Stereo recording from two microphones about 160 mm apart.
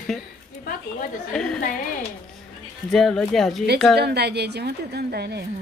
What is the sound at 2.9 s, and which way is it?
Speech, centre (ahead or behind).